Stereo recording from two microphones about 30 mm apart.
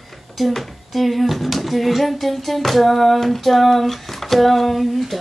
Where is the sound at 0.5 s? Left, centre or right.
Centre.